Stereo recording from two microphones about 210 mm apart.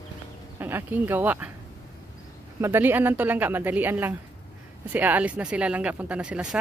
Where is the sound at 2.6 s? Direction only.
10° right (ahead or behind).